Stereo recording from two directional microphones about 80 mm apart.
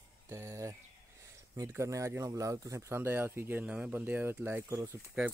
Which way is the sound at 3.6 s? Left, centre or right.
Centre.